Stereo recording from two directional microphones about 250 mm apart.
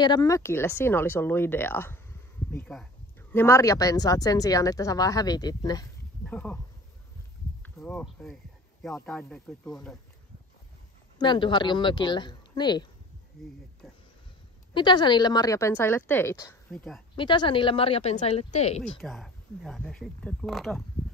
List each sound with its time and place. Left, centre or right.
0.0 s speech: centre
7.6 s speech: centre
11.1 s speech: centre
14.7 s speech: centre
18.9 s speech: centre